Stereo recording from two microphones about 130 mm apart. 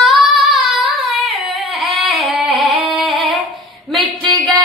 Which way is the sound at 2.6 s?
Centre (ahead or behind).